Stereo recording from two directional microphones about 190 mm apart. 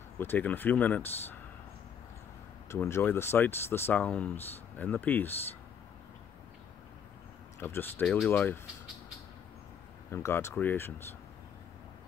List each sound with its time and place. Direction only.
0.2 s speech: 10° left (ahead or behind)
2.7 s speech: 15° left (ahead or behind)
7.6 s speech: 10° left (ahead or behind)
10.1 s speech: 15° left (ahead or behind)